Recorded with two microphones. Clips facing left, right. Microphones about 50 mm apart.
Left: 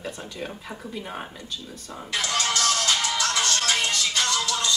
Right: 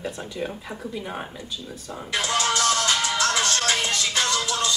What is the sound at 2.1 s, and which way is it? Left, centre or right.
Music, centre.